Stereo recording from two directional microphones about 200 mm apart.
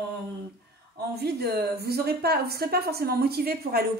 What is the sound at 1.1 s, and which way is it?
A woman's voice, 50° right (ahead or behind).